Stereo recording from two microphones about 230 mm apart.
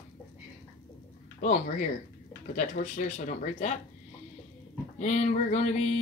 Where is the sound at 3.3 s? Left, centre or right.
Left.